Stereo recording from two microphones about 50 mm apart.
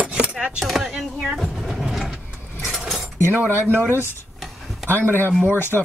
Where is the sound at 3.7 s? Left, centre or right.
Right.